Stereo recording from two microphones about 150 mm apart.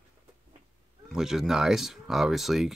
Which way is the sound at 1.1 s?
5° right (ahead or behind).